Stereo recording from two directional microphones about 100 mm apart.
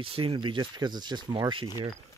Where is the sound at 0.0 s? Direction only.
60° right (ahead or behind).